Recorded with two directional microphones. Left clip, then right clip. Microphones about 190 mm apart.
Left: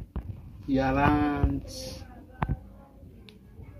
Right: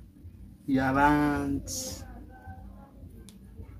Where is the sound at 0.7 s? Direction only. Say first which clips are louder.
Right 1 dB; 15° right (ahead or behind).